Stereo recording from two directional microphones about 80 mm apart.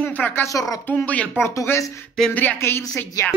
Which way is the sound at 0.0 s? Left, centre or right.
Centre.